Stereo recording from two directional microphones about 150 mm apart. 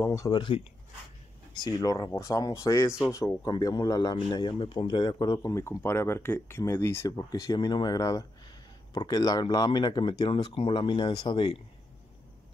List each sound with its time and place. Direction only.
0.0 s speech: 20° left (ahead or behind)
0.3 s speech: 35° left (ahead or behind)